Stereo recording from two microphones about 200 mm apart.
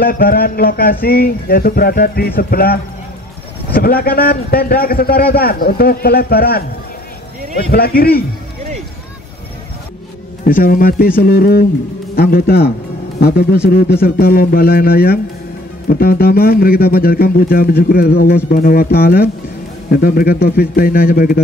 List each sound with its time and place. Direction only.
0.0 s speech: 45° left (ahead or behind)
10.4 s speech: 45° left (ahead or behind)